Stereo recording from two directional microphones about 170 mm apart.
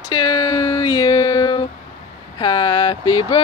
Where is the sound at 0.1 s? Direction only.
25° left (ahead or behind).